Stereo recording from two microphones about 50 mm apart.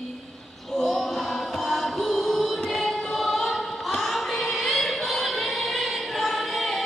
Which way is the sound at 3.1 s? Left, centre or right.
Centre.